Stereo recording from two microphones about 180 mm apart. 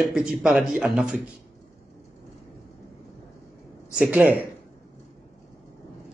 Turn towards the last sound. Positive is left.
turn(degrees=-10)  # may be behind; listen again after turning